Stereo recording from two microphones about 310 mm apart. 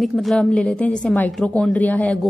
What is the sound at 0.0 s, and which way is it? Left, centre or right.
A woman's voice, centre.